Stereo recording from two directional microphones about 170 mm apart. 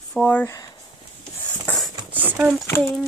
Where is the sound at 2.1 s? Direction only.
10° right (ahead or behind).